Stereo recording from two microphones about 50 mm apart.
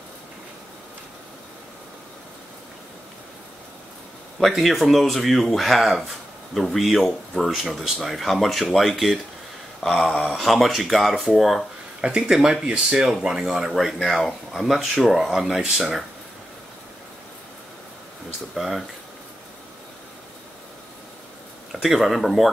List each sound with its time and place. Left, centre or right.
4.5 s speech: centre
12.0 s speech: centre
18.5 s speech: centre
21.8 s speech: centre